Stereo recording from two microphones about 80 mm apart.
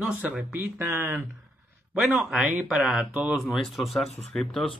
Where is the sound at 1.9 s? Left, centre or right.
Centre.